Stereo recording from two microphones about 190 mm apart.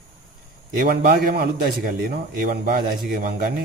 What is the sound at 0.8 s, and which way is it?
A man's voice, 50° right (ahead or behind).